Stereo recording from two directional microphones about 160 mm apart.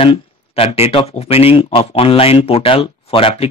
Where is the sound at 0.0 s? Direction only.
35° left (ahead or behind).